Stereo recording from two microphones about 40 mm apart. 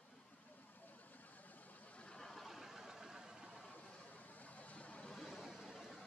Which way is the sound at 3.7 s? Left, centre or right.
Left.